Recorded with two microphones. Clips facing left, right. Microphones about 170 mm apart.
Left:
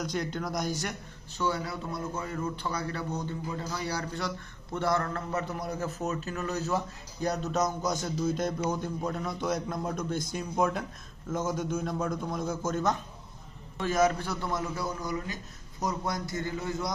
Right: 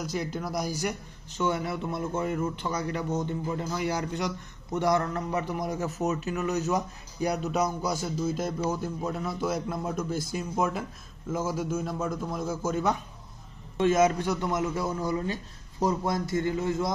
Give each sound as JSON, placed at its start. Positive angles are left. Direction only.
{"t": 0.0, "sound": "a man's voice", "side_deg": -5}
{"t": 1.4, "sound": "a man's voice", "side_deg": -20}
{"t": 13.7, "sound": "a man's voice", "side_deg": -25}